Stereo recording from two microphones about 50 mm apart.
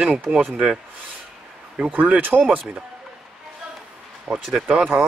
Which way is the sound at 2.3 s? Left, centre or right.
Right.